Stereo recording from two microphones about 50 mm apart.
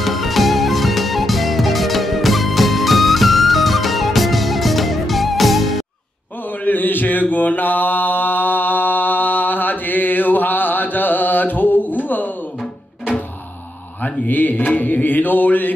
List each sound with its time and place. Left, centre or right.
0.0 s music: centre
6.6 s mantra: left
14.0 s mantra: left